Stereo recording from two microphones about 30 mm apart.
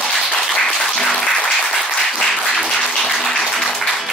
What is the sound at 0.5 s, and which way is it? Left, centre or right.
Applause, centre.